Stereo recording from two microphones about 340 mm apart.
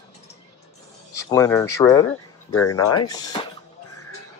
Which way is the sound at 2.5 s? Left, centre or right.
Left.